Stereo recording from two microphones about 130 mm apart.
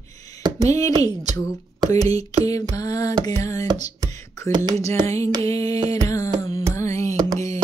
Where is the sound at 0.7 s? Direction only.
25° left (ahead or behind).